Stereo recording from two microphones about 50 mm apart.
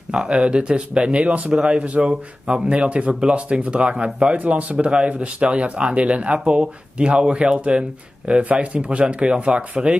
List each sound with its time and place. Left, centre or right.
0.1 s speech: centre